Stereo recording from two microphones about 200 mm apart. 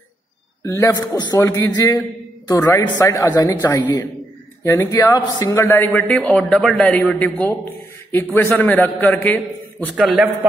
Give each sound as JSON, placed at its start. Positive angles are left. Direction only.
{"t": 0.7, "sound": "a man's voice", "side_deg": 15}